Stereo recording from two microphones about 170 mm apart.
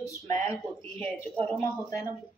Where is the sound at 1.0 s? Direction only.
10° left (ahead or behind).